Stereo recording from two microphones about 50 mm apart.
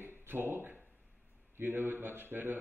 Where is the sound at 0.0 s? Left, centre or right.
Right.